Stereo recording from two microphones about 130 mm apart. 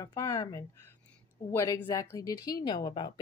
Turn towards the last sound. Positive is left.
turn(degrees=35)  # may be behind; listen again after turning